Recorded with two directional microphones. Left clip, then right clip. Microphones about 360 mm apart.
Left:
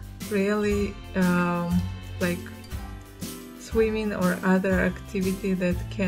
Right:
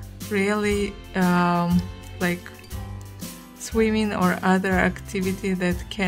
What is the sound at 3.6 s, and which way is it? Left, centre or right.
Speech, centre.